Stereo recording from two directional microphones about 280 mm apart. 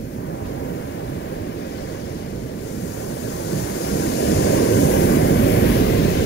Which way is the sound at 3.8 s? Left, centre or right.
Left.